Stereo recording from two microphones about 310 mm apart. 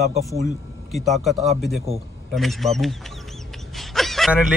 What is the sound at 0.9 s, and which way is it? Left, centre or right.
A man's voice, centre.